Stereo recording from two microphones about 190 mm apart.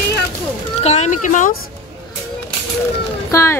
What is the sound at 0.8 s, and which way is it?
Speech, 35° left (ahead or behind).